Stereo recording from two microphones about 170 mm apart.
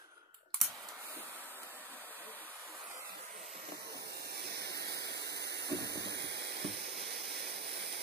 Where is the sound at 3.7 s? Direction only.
75° right (ahead or behind).